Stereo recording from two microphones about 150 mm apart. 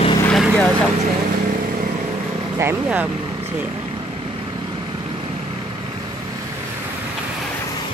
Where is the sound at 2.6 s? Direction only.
15° right (ahead or behind).